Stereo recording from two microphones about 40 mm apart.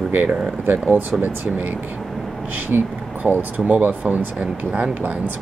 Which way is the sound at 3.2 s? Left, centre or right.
Right.